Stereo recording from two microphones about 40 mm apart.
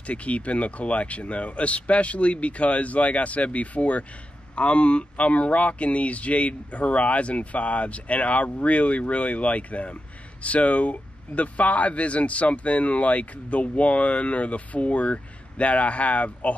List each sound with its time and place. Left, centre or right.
0.0 s speech: left